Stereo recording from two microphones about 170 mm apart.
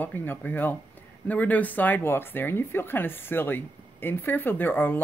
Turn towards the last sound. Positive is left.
turn(degrees=10)  # may be behind; listen again after turning